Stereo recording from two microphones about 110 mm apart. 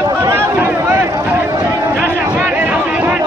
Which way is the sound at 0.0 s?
25° right (ahead or behind).